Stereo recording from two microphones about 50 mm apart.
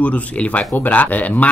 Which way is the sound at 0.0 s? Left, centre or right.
Left.